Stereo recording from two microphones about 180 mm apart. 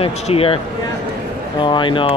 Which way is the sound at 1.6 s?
25° left (ahead or behind).